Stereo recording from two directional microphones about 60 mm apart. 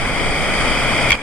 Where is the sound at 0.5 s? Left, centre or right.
Centre.